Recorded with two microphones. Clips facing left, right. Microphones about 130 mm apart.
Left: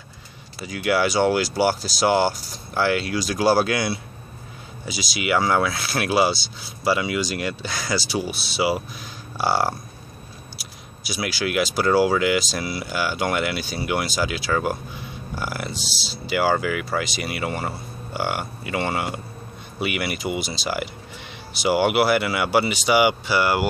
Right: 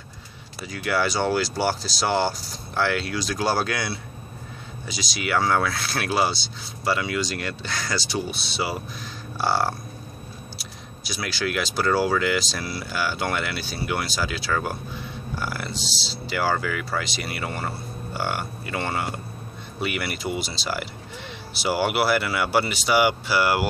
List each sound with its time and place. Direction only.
0.7 s speech: 5° left (ahead or behind)
11.1 s speech: 5° left (ahead or behind)
15.9 s speech: 25° right (ahead or behind)
16.3 s speech: 5° left (ahead or behind)